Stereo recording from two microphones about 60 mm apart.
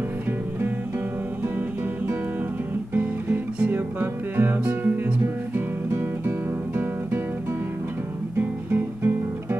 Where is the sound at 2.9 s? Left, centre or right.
Right.